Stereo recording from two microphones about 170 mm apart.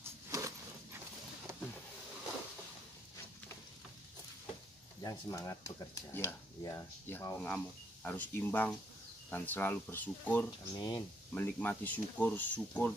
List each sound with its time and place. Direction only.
0.0 s a sound: 15° right (ahead or behind)
5.0 s speech: 25° left (ahead or behind)
10.8 s speech: 25° left (ahead or behind)
11.3 s speech: 10° left (ahead or behind)